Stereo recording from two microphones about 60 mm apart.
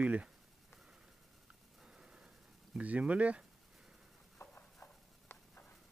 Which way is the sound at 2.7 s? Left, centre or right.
Right.